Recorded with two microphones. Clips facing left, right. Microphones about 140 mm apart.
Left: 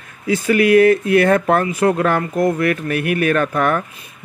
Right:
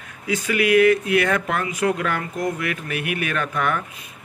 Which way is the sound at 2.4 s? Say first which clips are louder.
Left 8 dB; 50° left (ahead or behind).